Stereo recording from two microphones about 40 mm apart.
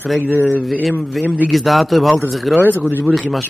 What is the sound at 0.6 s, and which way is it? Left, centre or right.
Speech, centre.